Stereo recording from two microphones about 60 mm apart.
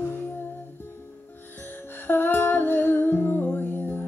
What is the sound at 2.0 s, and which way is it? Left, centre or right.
Music, left.